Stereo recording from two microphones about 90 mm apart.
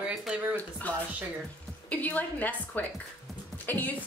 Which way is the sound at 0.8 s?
15° left (ahead or behind).